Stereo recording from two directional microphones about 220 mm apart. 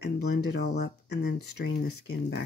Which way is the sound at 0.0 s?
45° left (ahead or behind).